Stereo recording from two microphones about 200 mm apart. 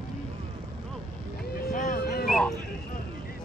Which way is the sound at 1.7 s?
40° left (ahead or behind).